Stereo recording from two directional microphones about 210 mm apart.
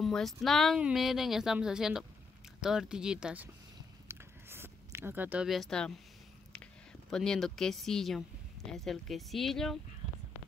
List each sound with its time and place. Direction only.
0.0 s speech: centre (ahead or behind)
4.1 s a sound: 10° right (ahead or behind)
7.1 s speech: centre (ahead or behind)